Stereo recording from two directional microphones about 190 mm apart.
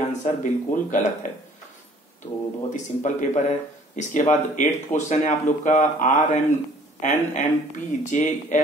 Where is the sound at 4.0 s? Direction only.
40° left (ahead or behind).